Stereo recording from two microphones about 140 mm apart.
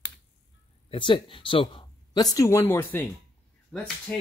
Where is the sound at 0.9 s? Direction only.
35° left (ahead or behind).